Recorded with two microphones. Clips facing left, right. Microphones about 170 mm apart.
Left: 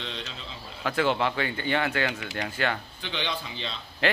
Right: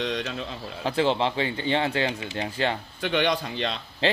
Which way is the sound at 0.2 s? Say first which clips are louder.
Right 8 dB; 60° right (ahead or behind).